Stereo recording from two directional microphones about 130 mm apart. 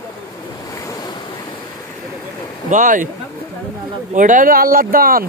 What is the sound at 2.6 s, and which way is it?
Speech, 85° right.